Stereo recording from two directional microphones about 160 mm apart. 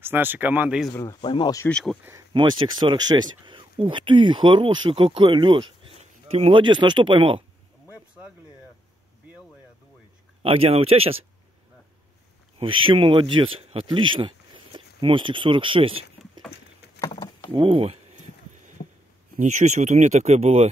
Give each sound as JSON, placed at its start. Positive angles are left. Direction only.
{"t": 0.0, "sound": "speech", "side_deg": -15}
{"t": 1.2, "sound": "speech", "side_deg": 30}
{"t": 1.7, "sound": "speech", "side_deg": 5}
{"t": 2.3, "sound": "speech", "side_deg": -30}
{"t": 10.4, "sound": "speech", "side_deg": -35}
{"t": 12.5, "sound": "speech", "side_deg": -35}
{"t": 17.0, "sound": "vehicle", "side_deg": 25}
{"t": 17.5, "sound": "speech", "side_deg": -30}
{"t": 19.3, "sound": "speech", "side_deg": -50}